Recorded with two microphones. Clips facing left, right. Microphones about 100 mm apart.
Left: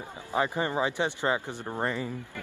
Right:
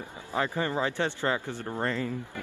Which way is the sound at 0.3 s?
20° left (ahead or behind).